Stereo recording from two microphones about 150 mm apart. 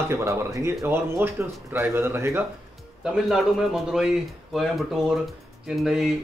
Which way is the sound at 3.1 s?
5° right (ahead or behind).